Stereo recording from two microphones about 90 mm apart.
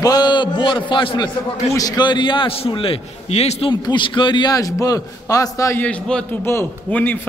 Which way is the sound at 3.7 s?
55° left (ahead or behind).